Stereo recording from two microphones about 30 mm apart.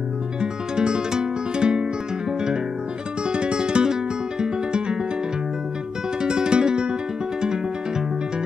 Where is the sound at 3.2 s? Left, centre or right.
Right.